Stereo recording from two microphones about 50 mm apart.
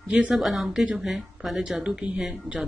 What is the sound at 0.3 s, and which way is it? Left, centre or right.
Speech, centre.